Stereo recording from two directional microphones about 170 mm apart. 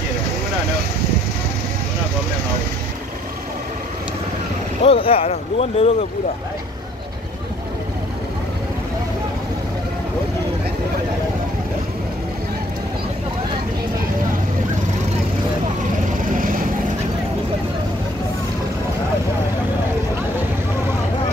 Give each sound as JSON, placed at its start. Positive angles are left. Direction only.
{"t": 4.8, "sound": "speech", "side_deg": 35}
{"t": 16.3, "sound": "vehicle", "side_deg": -55}